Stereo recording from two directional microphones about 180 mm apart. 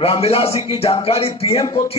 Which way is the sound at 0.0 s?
30° left (ahead or behind).